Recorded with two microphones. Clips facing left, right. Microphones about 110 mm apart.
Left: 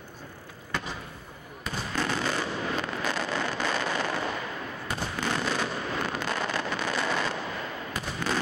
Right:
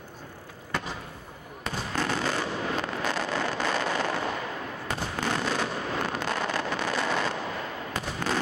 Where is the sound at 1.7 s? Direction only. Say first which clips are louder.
Right 1 dB; 45° right (ahead or behind).